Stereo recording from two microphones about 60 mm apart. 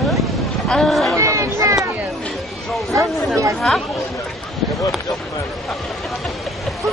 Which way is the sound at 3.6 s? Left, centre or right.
Centre.